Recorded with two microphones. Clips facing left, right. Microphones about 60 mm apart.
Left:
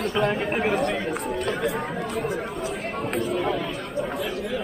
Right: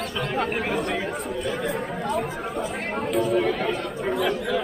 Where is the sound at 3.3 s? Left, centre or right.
Right.